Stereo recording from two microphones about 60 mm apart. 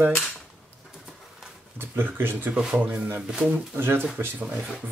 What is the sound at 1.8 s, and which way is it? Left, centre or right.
Speech, right.